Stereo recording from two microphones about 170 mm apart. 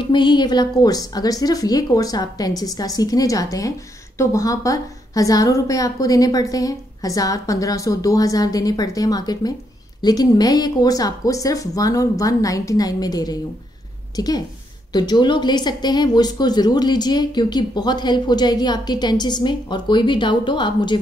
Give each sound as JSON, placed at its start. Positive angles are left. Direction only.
{"t": 0.0, "sound": "a woman's voice", "side_deg": 25}